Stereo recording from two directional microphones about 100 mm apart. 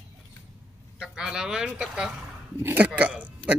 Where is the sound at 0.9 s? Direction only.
5° right (ahead or behind).